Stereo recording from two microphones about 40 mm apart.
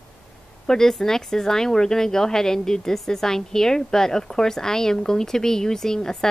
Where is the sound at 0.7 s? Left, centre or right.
Centre.